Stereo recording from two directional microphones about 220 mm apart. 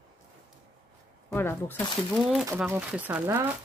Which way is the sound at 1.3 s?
10° left (ahead or behind).